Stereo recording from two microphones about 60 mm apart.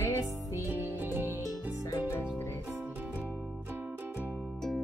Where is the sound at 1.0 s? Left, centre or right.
Right.